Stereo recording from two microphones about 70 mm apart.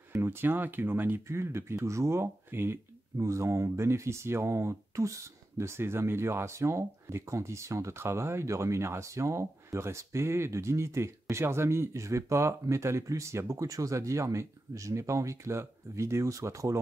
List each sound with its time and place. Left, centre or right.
0.1 s speech: right
1.2 s speech: right